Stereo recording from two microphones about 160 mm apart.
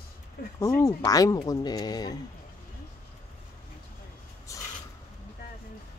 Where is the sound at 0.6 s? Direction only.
20° left (ahead or behind).